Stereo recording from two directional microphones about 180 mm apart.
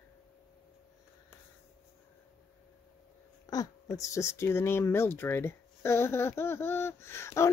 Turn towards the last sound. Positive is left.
turn(degrees=15)  # may be behind; listen again after turning